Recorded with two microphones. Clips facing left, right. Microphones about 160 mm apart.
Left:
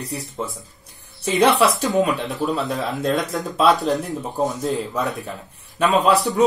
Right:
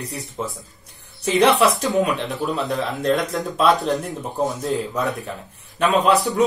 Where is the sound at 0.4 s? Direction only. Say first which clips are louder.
Right 1 dB; centre (ahead or behind).